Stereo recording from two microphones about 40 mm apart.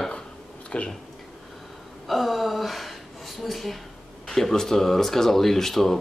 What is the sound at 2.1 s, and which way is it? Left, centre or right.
Gasp, centre.